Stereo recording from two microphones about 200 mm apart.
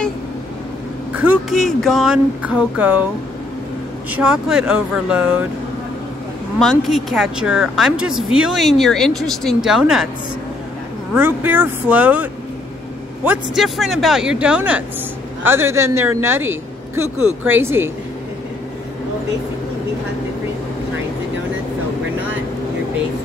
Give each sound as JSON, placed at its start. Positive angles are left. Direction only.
{"t": 1.1, "sound": "a woman's voice", "side_deg": -5}
{"t": 4.1, "sound": "a woman's voice", "side_deg": -5}
{"t": 6.6, "sound": "a woman's voice", "side_deg": 0}
{"t": 11.1, "sound": "a woman's voice", "side_deg": -10}